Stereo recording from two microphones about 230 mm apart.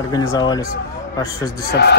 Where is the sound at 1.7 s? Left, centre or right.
Left.